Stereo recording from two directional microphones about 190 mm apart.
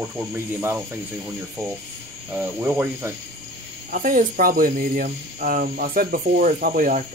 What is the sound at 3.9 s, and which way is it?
Speech, 45° right (ahead or behind).